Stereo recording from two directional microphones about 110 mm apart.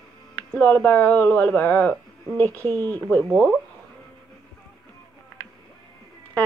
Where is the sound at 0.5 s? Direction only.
15° left (ahead or behind).